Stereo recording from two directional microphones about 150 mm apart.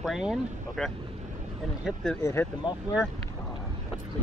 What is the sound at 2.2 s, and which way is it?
Speech, 15° left (ahead or behind).